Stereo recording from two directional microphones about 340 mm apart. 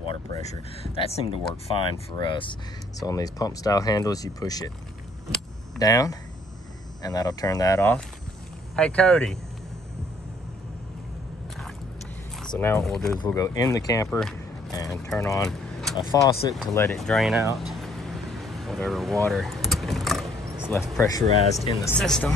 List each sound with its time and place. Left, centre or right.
0.0 s speech: centre
5.8 s speech: centre
12.4 s speech: centre
16.1 s speech: centre
16.5 s a sound: centre
21.5 s speech: centre